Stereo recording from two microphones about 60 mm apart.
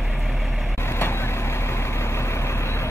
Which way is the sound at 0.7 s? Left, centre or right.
Left.